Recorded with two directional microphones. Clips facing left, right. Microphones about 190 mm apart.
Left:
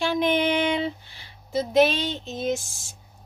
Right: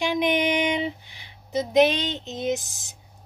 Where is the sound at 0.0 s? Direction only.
15° right (ahead or behind).